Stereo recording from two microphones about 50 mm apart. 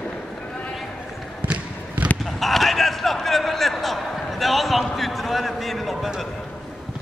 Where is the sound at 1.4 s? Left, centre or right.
Right.